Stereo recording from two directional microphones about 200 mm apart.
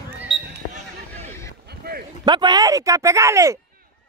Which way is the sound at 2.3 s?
20° right (ahead or behind).